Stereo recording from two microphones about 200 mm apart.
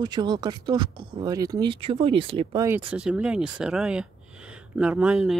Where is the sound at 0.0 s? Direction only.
20° right (ahead or behind).